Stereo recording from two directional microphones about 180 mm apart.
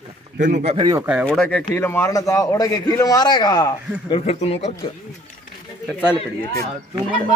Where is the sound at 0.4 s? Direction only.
45° right (ahead or behind).